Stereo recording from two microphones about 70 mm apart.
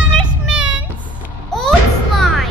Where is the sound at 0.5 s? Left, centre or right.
Centre.